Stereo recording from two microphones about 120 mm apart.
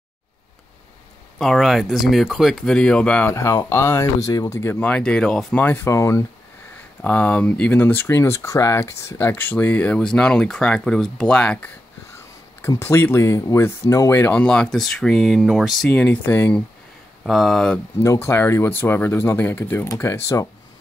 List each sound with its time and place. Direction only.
1.4 s speech: centre (ahead or behind)
3.3 s speech: 25° left (ahead or behind)
7.0 s speech: 10° left (ahead or behind)
12.6 s speech: 20° left (ahead or behind); by 15.9 s centre (ahead or behind)
15.9 s speech: 15° left (ahead or behind)
17.2 s speech: centre (ahead or behind)
18.0 s speech: 20° left (ahead or behind)